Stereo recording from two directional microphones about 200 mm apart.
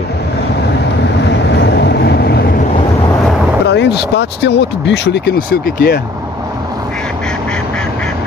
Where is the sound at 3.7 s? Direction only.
55° left (ahead or behind).